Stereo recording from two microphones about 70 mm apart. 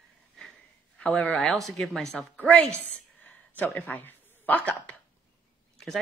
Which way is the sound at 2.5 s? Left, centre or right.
Left.